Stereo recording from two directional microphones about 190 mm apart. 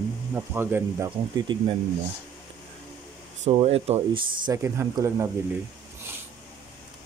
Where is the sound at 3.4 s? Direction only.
35° right (ahead or behind).